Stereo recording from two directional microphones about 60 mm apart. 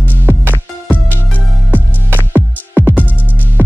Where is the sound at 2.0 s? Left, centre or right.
Right.